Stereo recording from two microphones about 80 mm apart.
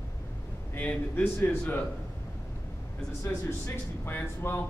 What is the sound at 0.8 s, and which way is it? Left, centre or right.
Speech, left.